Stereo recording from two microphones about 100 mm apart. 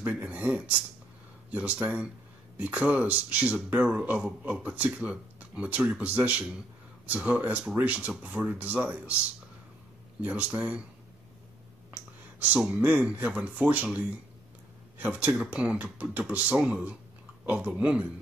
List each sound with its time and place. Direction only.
0.0 s speech: 15° right (ahead or behind)
10.2 s speech: 15° right (ahead or behind)
11.9 s speech: 15° right (ahead or behind)